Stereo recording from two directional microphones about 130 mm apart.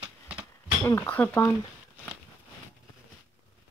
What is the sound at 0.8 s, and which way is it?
Speech, 20° left (ahead or behind).